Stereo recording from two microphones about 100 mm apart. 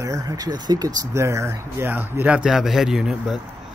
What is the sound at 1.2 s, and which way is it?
A man's voice, 30° right (ahead or behind).